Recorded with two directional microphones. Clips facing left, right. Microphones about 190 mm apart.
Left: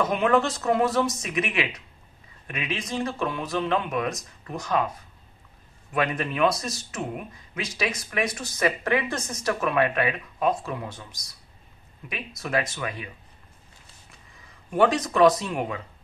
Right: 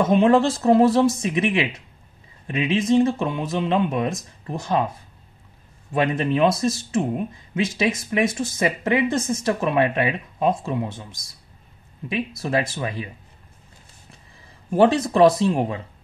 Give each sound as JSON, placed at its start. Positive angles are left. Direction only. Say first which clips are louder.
{"t": 0.0, "sound": "speech", "louder": "right 6 dB", "side_deg": -25}
{"t": 5.9, "sound": "speech", "louder": "right 5 dB", "side_deg": -25}
{"t": 14.7, "sound": "speech", "louder": "right 4 dB", "side_deg": -30}